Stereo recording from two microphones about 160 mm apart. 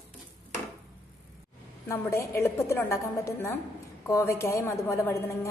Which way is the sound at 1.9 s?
15° left (ahead or behind).